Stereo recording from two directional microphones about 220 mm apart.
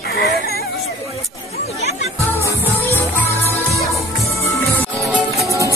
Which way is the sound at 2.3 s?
10° left (ahead or behind).